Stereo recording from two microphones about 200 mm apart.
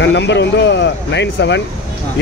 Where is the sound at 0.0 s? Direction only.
60° left (ahead or behind).